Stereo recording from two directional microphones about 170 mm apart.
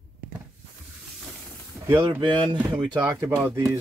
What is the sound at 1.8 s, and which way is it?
Speech, 20° right (ahead or behind).